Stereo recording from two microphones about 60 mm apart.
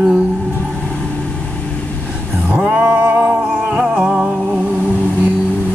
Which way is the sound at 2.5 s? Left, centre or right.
Right.